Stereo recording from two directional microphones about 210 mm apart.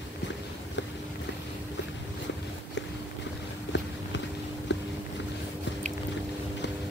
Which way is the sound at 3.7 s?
60° left (ahead or behind).